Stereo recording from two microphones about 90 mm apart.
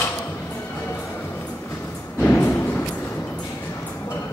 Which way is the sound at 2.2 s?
25° left (ahead or behind).